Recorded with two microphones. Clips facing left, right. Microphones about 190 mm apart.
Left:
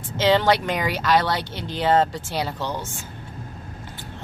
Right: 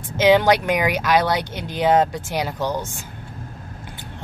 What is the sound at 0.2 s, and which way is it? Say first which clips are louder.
Speech: right 3 dB; 15° right (ahead or behind).